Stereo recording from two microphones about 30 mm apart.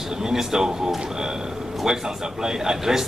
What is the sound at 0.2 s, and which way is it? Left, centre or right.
A man's voice, centre.